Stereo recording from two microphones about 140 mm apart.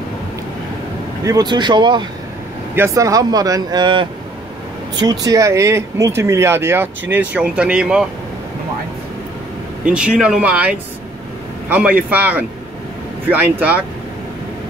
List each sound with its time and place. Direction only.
1.2 s speech: 30° right (ahead or behind)
2.7 s speech: 20° right (ahead or behind)
9.8 s speech: 5° right (ahead or behind)